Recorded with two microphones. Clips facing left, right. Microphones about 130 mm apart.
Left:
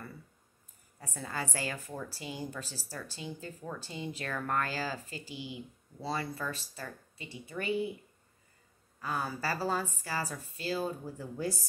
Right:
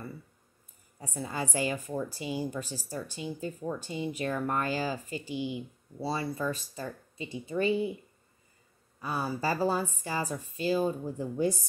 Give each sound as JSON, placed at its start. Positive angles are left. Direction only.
{"t": 0.9, "sound": "a woman's voice", "side_deg": -15}
{"t": 9.0, "sound": "a woman's voice", "side_deg": -10}